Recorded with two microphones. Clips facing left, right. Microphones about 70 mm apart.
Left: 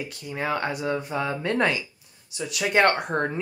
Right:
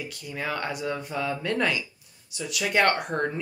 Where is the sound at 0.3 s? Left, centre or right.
Left.